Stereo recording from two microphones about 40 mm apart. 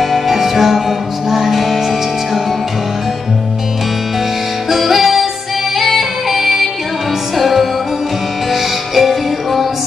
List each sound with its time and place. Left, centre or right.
0.0 s music: centre
4.6 s music: centre